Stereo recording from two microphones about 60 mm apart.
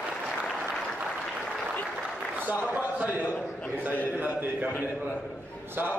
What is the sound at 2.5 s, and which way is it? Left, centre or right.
Speech, right.